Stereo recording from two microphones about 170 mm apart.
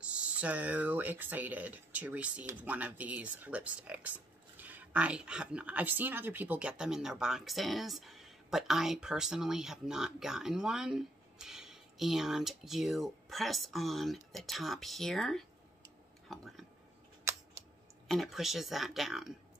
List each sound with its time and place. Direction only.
0.0 s speech: 5° right (ahead or behind)
17.3 s scissors: 15° right (ahead or behind)
18.0 s speech: centre (ahead or behind)